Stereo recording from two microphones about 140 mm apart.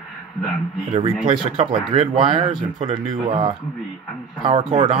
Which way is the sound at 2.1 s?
35° right (ahead or behind).